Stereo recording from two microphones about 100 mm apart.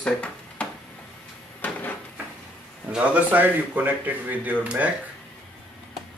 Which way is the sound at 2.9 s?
15° right (ahead or behind).